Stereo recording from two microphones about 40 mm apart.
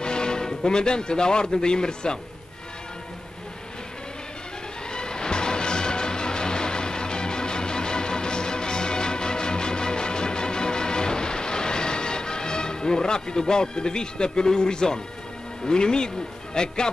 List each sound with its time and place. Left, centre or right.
0.0 s speech: left
4.9 s music: centre
15.6 s speech: centre